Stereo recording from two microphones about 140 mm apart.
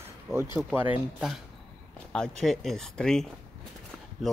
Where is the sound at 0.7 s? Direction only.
5° right (ahead or behind).